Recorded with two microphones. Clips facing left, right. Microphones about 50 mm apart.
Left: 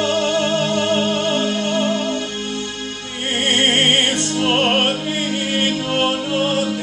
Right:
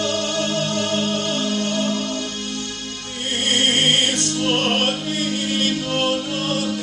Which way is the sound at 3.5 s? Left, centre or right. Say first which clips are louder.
Left 2 dB; left.